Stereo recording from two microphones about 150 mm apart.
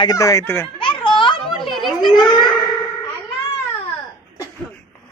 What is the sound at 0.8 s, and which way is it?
Children playing, 35° left (ahead or behind).